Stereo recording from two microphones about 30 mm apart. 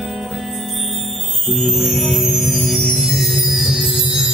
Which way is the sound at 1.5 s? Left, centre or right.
Centre.